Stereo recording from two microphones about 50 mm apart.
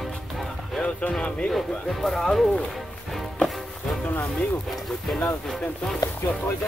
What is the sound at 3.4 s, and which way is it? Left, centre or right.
Music, centre.